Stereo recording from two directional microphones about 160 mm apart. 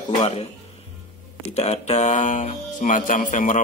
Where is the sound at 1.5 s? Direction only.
45° left (ahead or behind).